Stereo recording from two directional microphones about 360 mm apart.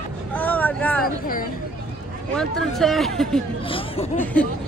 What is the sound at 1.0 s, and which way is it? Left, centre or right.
Speech, left.